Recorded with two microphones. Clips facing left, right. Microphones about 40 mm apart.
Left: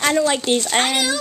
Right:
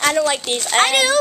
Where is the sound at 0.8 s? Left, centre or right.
Right.